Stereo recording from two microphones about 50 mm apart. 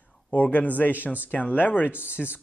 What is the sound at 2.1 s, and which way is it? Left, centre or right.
Speech, right.